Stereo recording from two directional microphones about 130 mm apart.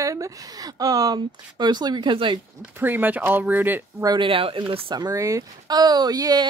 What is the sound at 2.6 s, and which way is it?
Speech, 15° right (ahead or behind).